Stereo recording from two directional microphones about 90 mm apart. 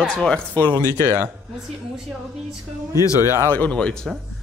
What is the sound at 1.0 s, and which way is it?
Speech, 25° right (ahead or behind).